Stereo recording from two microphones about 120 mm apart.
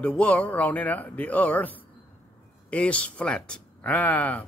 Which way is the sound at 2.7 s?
10° left (ahead or behind).